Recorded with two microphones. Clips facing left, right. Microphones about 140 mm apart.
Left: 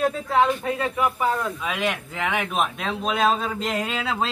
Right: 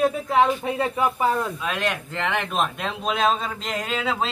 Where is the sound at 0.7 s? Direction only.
30° right (ahead or behind).